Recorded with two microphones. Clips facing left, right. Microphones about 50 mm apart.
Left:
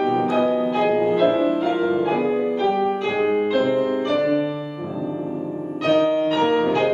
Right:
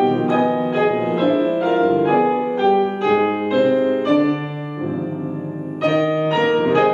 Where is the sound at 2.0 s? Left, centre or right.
Centre.